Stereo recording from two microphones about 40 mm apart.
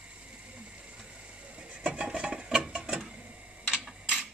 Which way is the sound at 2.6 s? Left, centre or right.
Right.